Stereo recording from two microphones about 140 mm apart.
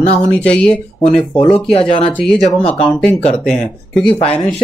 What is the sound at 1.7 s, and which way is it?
Speech, 40° left (ahead or behind).